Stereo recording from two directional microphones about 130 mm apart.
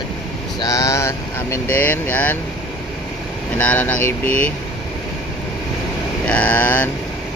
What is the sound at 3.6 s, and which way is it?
Speech, 10° left (ahead or behind).